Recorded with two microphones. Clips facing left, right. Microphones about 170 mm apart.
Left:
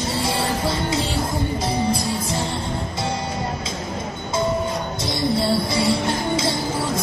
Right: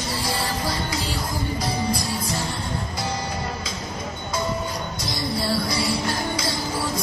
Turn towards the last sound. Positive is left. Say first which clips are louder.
# left 3 dB
turn(degrees=25)  # may be behind; listen again after turning